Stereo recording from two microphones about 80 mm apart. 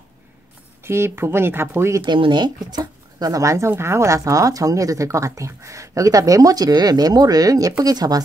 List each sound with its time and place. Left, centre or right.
0.8 s speech: right
2.0 s speech: right
2.7 s speech: right